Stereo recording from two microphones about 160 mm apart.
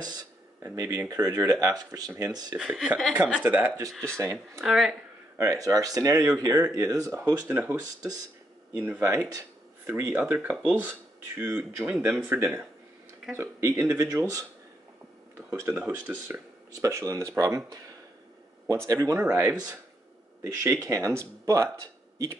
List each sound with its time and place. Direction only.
0.0 s a sound: 25° right (ahead or behind)
0.7 s speech: 20° right (ahead or behind)
2.5 s speech: 5° right (ahead or behind)
4.6 s speech: centre (ahead or behind)
5.4 s speech: 20° right (ahead or behind)
15.7 s speech: 5° right (ahead or behind)
16.7 s speech: 20° right (ahead or behind)
18.9 s speech: 20° right (ahead or behind)